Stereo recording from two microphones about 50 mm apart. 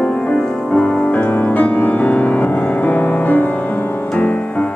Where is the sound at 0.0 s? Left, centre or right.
Left.